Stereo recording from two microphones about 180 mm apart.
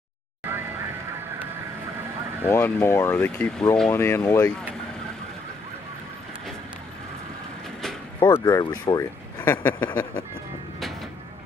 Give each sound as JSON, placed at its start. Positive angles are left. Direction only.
{"t": 2.5, "sound": "speech", "side_deg": 15}
{"t": 3.2, "sound": "speech", "side_deg": 5}
{"t": 8.2, "sound": "speech", "side_deg": 20}